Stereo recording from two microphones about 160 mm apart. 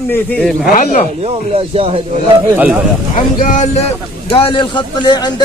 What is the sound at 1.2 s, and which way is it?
Speech, 40° right (ahead or behind).